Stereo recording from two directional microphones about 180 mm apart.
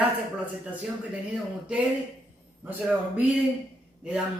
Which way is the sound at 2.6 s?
10° right (ahead or behind).